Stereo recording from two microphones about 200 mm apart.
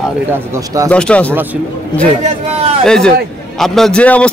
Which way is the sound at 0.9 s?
5° left (ahead or behind).